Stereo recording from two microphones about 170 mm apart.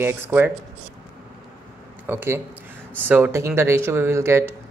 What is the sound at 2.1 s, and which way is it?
Speech, 15° right (ahead or behind).